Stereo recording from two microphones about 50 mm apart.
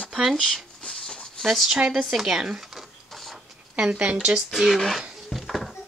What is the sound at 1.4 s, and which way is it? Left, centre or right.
Speech, centre.